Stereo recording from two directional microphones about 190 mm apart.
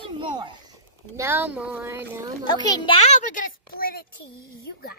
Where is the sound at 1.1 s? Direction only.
10° right (ahead or behind).